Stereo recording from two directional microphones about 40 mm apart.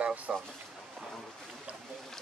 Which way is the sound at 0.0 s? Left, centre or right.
Right.